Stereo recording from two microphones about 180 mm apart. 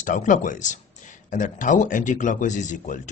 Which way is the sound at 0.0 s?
45° left (ahead or behind).